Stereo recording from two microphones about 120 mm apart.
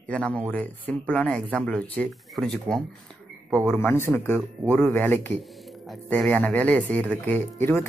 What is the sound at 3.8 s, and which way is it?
Speech, 20° left (ahead or behind).